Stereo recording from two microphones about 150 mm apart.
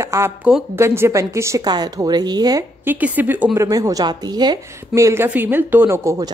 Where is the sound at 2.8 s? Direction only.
10° right (ahead or behind).